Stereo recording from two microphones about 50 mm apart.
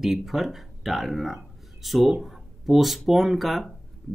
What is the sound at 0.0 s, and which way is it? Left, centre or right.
Speech, centre.